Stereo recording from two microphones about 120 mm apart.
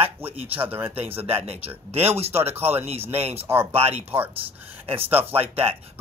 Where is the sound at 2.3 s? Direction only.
20° right (ahead or behind).